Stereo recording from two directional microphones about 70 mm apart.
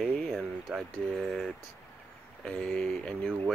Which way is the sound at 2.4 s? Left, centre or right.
Centre.